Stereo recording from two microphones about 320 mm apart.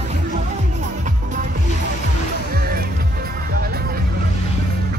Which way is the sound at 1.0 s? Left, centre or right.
Right.